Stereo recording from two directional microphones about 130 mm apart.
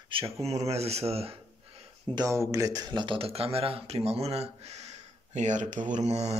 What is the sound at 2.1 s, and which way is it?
Speech, 25° right (ahead or behind).